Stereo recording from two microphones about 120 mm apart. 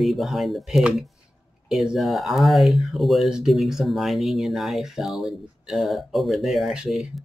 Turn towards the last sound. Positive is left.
turn(degrees=0)  # may be behind; listen again after turning